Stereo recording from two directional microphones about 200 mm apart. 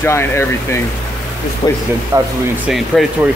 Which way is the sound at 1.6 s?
25° left (ahead or behind).